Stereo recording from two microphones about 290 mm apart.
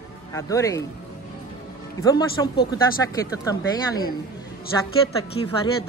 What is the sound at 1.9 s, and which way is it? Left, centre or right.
Speech, centre.